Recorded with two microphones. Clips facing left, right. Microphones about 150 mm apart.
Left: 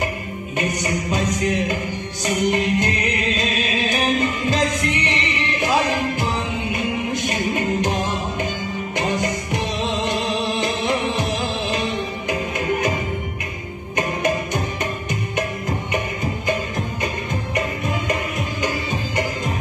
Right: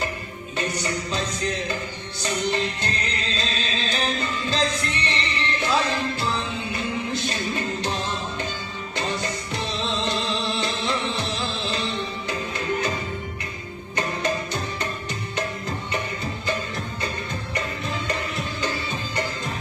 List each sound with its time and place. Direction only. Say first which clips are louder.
0.6 s music: left 4 dB; 15° left (ahead or behind)
13.9 s music: left 4 dB; 15° left (ahead or behind)
17.0 s music: left 5 dB; 15° left (ahead or behind)